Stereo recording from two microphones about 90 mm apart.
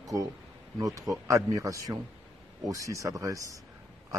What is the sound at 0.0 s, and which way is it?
Speech, 40° right (ahead or behind).